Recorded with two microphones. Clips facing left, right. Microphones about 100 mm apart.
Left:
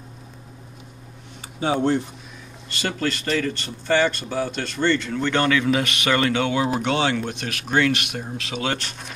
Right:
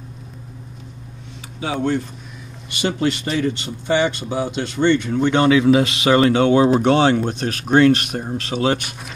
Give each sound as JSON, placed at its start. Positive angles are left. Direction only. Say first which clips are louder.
{"t": 1.6, "sound": "speech", "louder": "left 1 dB", "side_deg": 30}
{"t": 2.7, "sound": "speech", "louder": "right 5 dB", "side_deg": -20}
{"t": 6.2, "sound": "speech", "louder": "right 8 dB", "side_deg": -35}
{"t": 8.7, "sound": "speech", "louder": "right 4 dB", "side_deg": -10}